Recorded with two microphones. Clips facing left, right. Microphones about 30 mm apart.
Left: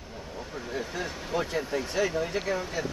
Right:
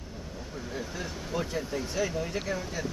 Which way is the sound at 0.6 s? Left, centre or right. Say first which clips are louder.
Left 3 dB; centre.